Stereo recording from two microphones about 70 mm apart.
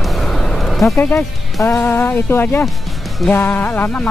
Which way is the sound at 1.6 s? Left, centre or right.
Left.